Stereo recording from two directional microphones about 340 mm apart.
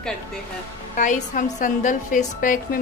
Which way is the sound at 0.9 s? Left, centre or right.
Left.